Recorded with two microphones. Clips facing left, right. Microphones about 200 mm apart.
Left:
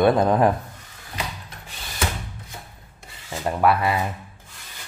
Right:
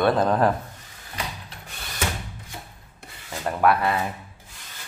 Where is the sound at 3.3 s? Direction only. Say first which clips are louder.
Left 2 dB; 15° left (ahead or behind).